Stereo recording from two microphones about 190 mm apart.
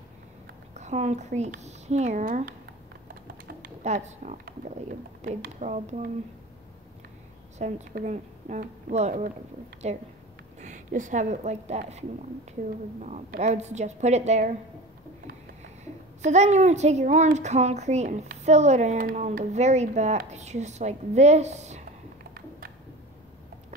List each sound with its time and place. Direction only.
0.7 s a woman's voice: 35° right (ahead or behind)
3.6 s a woman's voice: 35° right (ahead or behind)
7.6 s a woman's voice: 35° right (ahead or behind)
13.0 s a woman's voice: 40° right (ahead or behind)
16.3 s a woman's voice: 35° right (ahead or behind)